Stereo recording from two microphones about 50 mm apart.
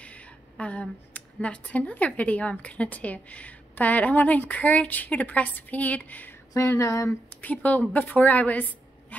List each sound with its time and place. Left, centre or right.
0.0 s speech: left
6.8 s speech: left
7.4 s a woman's voice: left